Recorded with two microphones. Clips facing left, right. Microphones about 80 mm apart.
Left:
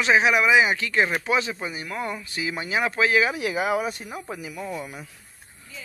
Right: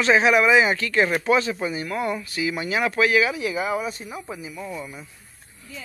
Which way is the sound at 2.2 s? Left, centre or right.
Left.